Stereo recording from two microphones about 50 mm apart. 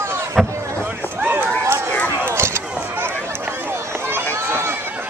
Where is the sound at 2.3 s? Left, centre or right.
Right.